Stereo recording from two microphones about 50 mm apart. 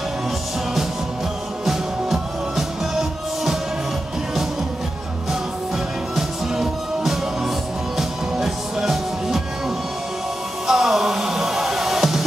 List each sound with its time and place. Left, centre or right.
1.7 s music: centre
6.1 s music: centre
10.7 s music: centre